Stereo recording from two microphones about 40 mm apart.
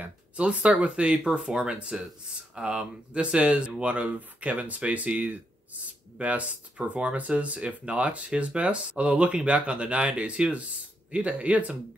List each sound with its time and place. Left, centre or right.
0.0 s speech: right; by 1.8 s centre
1.8 s speech: right